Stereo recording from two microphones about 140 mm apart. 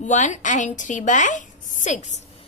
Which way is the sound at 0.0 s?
60° left (ahead or behind).